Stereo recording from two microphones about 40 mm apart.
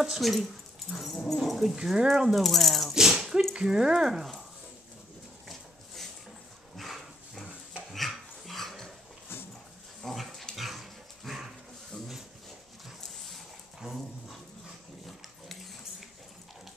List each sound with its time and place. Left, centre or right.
0.0 s speech: centre
2.0 s speech: centre
2.9 s a sound: centre
3.5 s speech: centre
6.8 s dog: centre
10.0 s dog: centre
13.8 s dog: centre